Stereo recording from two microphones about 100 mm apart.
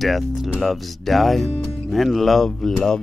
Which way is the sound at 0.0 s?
Centre (ahead or behind).